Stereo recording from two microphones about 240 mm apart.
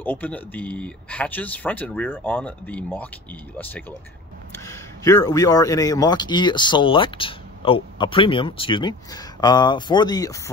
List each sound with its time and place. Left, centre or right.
0.0 s a man's voice: centre
4.6 s a man's voice: centre